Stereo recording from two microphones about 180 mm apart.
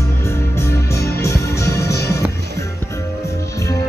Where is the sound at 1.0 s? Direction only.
60° left (ahead or behind).